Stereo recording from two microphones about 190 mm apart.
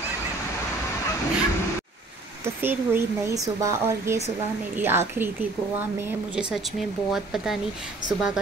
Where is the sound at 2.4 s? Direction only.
10° right (ahead or behind).